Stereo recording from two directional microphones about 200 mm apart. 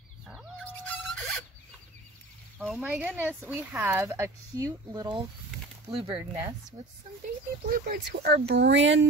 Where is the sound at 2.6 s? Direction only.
Centre (ahead or behind); by 6.2 s 30° right (ahead or behind).